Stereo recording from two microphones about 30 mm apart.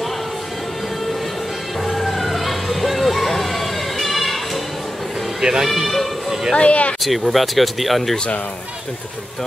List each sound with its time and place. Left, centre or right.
1.9 s vehicle: centre
5.4 s speech: centre
6.6 s speech: left
7.0 s speech: centre